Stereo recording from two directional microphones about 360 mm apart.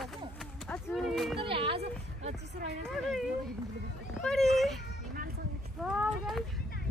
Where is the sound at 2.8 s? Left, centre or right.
Centre.